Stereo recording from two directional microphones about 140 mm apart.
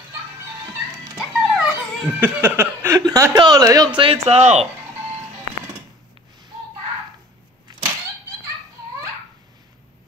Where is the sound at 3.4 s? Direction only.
25° right (ahead or behind).